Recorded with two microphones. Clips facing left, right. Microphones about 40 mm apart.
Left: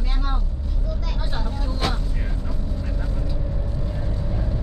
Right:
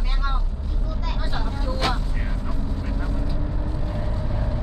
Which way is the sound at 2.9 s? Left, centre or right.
Centre.